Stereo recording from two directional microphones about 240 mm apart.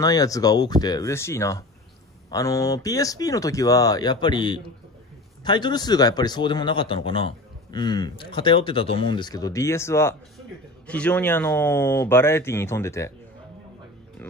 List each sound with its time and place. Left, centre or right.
0.0 s a man's voice: centre